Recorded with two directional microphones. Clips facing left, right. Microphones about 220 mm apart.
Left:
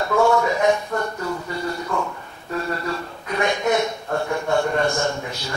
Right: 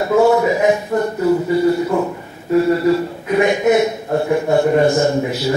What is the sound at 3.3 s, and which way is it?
A man's voice, 20° right (ahead or behind).